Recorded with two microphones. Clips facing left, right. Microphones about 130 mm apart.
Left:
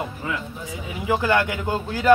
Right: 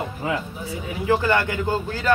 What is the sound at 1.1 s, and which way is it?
Speech, 10° left (ahead or behind).